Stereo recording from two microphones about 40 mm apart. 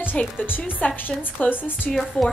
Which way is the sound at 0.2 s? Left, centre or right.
Left.